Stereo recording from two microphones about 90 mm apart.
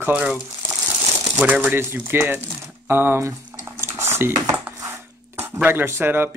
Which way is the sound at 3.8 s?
30° right (ahead or behind).